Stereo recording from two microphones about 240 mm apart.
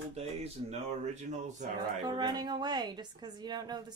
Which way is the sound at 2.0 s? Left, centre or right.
Centre.